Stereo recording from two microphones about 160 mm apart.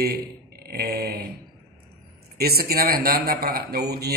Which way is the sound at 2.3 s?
75° right (ahead or behind).